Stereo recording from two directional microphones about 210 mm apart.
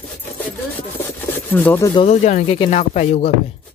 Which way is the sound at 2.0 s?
30° left (ahead or behind).